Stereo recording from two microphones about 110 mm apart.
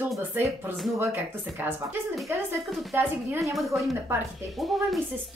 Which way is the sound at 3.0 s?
25° right (ahead or behind).